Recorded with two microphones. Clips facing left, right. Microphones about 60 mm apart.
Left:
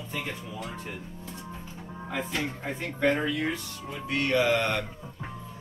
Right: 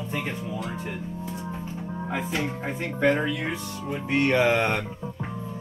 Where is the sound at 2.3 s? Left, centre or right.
Centre.